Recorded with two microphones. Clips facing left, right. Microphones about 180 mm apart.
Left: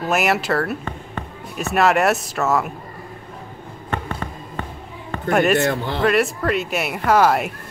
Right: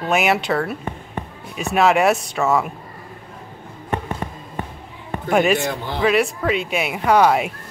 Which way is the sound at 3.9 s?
15° right (ahead or behind).